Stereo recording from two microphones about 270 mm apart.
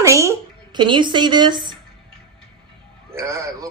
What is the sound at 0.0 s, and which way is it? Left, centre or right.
Speech, centre.